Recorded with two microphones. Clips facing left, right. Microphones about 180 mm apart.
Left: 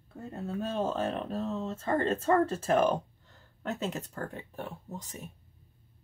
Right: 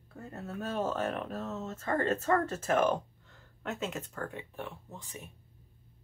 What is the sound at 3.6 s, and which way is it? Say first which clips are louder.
Speech: left 2 dB; 35° left (ahead or behind).